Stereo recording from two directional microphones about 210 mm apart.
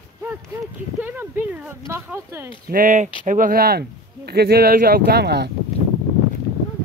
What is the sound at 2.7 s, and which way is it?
Speech, 40° right (ahead or behind).